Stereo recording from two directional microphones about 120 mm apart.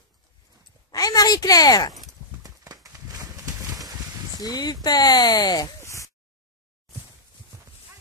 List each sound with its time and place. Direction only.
0.9 s a woman's voice: 30° left (ahead or behind)
2.4 s a sound: 30° right (ahead or behind)
4.4 s speech: 35° left (ahead or behind)